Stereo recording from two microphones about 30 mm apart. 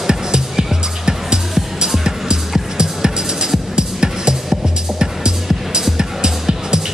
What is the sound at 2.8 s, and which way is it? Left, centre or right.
Music, right.